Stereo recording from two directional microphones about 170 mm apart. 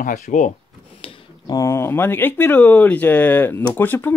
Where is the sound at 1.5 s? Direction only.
15° left (ahead or behind).